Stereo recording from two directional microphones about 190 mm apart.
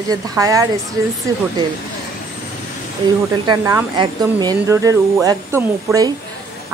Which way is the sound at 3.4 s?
20° right (ahead or behind).